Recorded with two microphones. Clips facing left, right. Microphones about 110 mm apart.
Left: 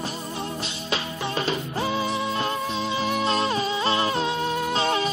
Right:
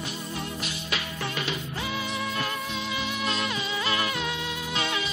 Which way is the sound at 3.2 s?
35° left (ahead or behind).